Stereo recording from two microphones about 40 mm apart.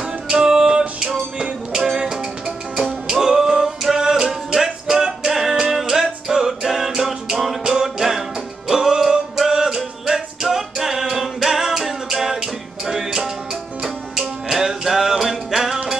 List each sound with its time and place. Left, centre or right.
0.0 s music: centre